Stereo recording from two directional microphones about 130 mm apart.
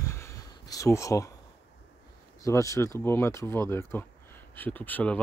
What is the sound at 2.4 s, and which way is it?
Speech, 25° left (ahead or behind).